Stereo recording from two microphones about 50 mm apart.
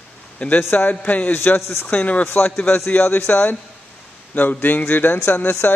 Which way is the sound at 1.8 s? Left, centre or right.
Left.